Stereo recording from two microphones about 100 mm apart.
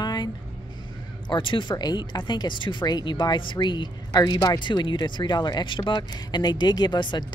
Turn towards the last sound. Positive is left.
turn(degrees=50)  # may be behind; listen again after turning